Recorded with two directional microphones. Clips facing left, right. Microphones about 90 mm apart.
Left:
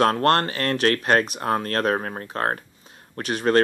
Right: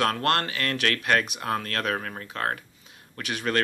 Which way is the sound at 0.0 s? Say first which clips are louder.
Left 6 dB; 35° left (ahead or behind).